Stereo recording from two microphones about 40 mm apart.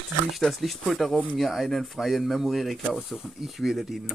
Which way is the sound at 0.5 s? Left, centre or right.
Centre.